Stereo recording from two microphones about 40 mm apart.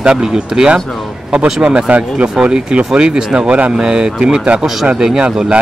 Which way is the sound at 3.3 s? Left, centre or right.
Right.